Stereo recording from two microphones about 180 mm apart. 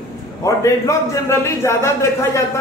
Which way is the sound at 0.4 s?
15° left (ahead or behind).